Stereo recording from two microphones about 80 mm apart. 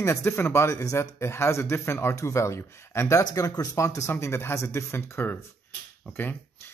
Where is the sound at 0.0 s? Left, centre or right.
Left.